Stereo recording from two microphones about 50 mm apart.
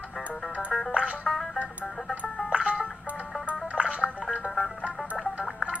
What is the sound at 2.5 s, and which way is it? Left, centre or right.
Music, right.